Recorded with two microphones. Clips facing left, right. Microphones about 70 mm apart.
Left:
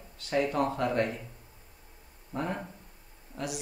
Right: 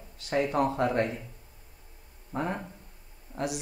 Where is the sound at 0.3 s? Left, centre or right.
Right.